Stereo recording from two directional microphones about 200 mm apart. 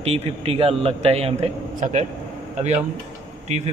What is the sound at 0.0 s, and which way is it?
A man's voice, 30° right (ahead or behind).